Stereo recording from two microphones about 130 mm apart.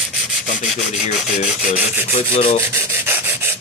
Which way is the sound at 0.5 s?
70° left (ahead or behind).